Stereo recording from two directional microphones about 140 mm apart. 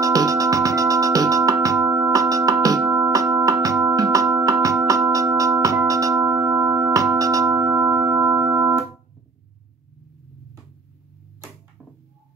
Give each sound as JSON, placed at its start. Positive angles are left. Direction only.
{"t": 0.0, "sound": "music", "side_deg": -25}